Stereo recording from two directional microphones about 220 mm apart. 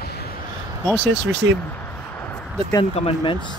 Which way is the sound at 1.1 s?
55° right (ahead or behind).